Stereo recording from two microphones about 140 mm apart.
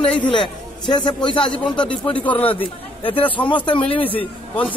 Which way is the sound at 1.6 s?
10° left (ahead or behind).